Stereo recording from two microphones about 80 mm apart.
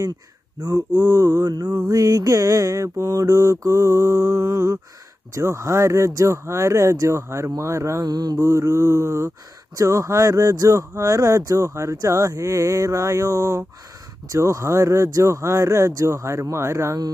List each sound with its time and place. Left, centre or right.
0.6 s mantra: right
5.3 s speech: right
8.0 s mantra: right
8.4 s speech: right